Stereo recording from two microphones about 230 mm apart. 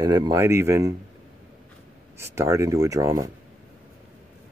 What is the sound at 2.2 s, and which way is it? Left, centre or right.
Speech, centre.